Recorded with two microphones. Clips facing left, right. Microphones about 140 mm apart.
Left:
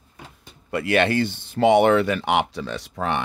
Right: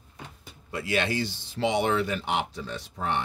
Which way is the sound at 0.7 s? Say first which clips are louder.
Left 7 dB; 65° left (ahead or behind).